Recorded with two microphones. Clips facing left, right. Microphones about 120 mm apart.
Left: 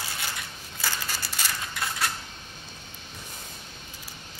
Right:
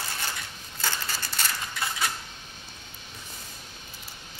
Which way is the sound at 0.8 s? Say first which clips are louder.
Even; 5° left (ahead or behind).